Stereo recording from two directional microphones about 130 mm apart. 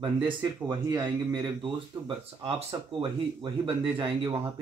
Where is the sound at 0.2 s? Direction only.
35° right (ahead or behind).